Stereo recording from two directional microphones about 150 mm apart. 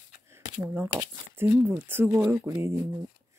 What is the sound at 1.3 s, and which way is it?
Speech, 15° right (ahead or behind).